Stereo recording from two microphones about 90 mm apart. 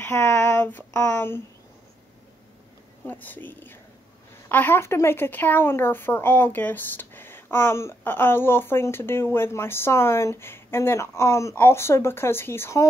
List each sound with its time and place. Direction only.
0.0 s speech: 30° left (ahead or behind)
3.1 s speech: 20° left (ahead or behind)